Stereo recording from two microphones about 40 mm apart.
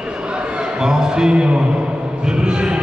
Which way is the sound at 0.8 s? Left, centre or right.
Centre.